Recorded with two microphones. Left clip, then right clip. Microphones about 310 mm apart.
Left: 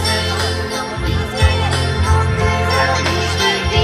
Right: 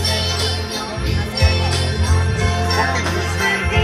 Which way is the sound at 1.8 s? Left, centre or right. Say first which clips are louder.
Left 4 dB; left.